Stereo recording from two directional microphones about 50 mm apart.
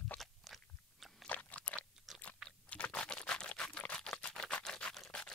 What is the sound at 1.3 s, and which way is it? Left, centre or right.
Chewing, left.